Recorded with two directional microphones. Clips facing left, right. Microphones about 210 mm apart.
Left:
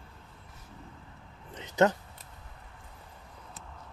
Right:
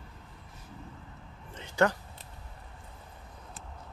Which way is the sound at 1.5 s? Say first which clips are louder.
Left 2 dB; 20° left (ahead or behind).